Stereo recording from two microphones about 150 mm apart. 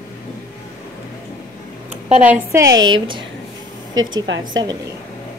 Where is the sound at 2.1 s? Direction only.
10° right (ahead or behind); by 4.7 s 25° right (ahead or behind).